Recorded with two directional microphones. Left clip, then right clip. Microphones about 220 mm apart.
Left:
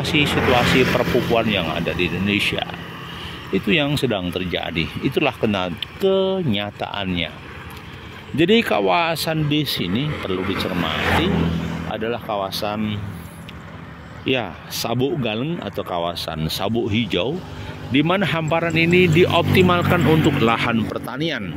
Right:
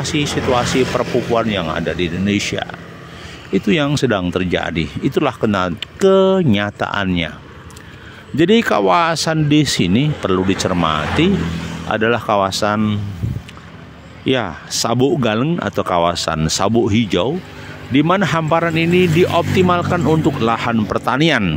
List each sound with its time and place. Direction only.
0.0 s speech: 15° right (ahead or behind)
1.0 s speech: 35° left (ahead or behind)
1.3 s speech: 15° right (ahead or behind)
8.4 s speech: 20° right (ahead or behind)
14.2 s speech: 25° right (ahead or behind)
20.8 s speech: 35° right (ahead or behind)